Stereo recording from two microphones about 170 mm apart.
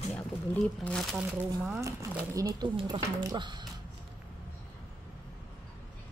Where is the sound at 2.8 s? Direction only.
30° right (ahead or behind).